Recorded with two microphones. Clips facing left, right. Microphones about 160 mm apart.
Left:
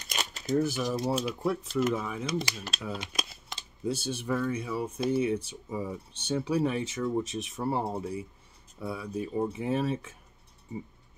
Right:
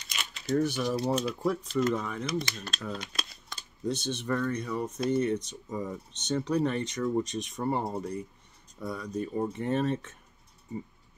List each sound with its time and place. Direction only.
0.2 s a sound: 40° left (ahead or behind)
0.6 s speech: 5° left (ahead or behind)
3.0 s shuffling cards: 20° left (ahead or behind)
3.8 s speech: 5° left (ahead or behind)